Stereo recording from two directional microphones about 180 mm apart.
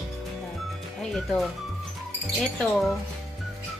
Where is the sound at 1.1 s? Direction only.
Centre (ahead or behind).